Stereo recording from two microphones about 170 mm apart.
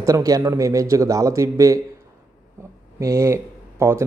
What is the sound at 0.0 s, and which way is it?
Speech, 20° right (ahead or behind).